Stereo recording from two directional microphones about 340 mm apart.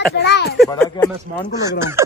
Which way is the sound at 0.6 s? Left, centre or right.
Centre.